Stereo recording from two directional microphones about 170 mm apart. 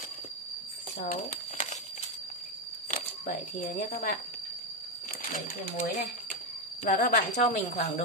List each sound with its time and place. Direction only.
1.0 s speech: 50° left (ahead or behind)
2.9 s speech: 50° left (ahead or behind)
5.9 s a woman's voice: 50° left (ahead or behind)